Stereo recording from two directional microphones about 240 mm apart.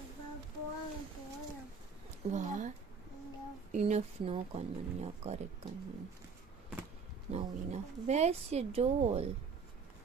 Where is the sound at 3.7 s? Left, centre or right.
Right.